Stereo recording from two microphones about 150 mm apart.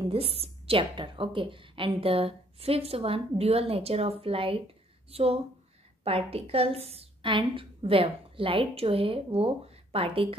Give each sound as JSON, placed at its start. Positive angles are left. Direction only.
{"t": 0.0, "sound": "a woman's voice", "side_deg": -40}